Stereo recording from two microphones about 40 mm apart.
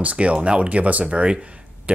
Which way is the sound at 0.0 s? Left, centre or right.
Right.